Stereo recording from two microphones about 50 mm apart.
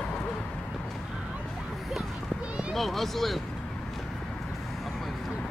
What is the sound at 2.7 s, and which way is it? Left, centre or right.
Speech, centre.